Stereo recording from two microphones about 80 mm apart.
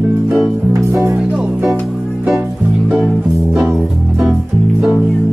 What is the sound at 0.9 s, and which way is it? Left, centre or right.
Music, right.